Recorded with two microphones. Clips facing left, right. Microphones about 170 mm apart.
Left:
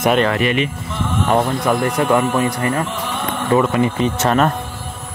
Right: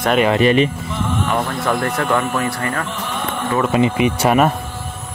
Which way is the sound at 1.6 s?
15° left (ahead or behind).